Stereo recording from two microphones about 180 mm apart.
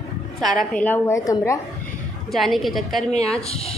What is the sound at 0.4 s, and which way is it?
A woman's voice, centre (ahead or behind).